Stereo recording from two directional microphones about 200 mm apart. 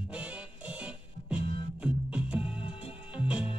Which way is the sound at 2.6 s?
25° left (ahead or behind).